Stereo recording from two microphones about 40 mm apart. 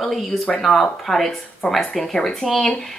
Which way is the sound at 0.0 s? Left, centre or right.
Centre.